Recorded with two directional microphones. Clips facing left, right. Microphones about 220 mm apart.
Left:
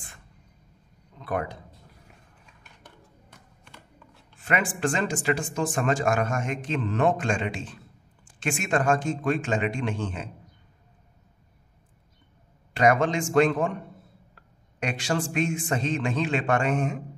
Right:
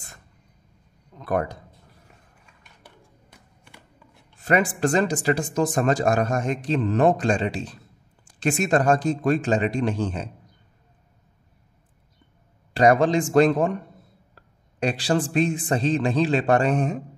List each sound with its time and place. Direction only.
1.2 s speech: 40° right (ahead or behind)
2.8 s a sound: 10° right (ahead or behind)
4.4 s speech: 40° right (ahead or behind)
12.7 s speech: 35° right (ahead or behind)